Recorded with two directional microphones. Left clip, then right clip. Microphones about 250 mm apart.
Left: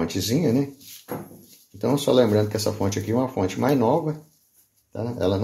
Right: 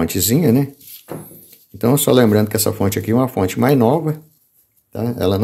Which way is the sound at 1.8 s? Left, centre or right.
Right.